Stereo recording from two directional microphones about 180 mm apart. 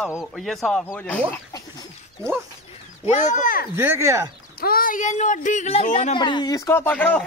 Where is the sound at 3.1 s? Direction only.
40° left (ahead or behind).